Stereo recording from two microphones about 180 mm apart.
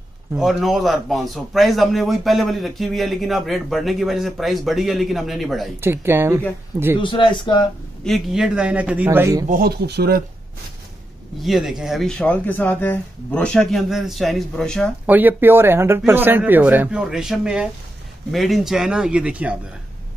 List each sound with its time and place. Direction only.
0.3 s a man's voice: centre (ahead or behind)
5.8 s speech: 15° right (ahead or behind)
7.0 s speech: 25° left (ahead or behind)
8.0 s speech: centre (ahead or behind); by 9.5 s 15° right (ahead or behind)
9.5 s speech: 60° right (ahead or behind)
11.3 s a man's voice: centre (ahead or behind)
15.0 s a man's voice: 10° right (ahead or behind)